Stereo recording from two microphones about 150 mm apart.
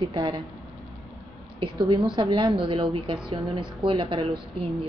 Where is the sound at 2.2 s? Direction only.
30° right (ahead or behind).